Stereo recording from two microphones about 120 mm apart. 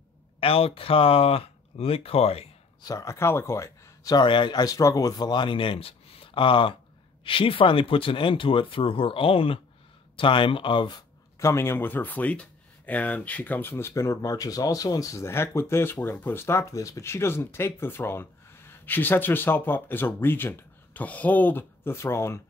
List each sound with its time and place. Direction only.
0.4 s speech: 50° left (ahead or behind)
2.8 s speech: 25° left (ahead or behind)
11.3 s speech: 25° left (ahead or behind)